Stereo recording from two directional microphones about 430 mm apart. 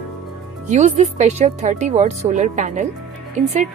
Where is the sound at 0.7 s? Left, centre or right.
Centre.